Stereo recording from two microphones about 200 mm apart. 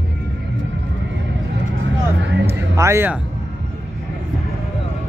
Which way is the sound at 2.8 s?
15° right (ahead or behind).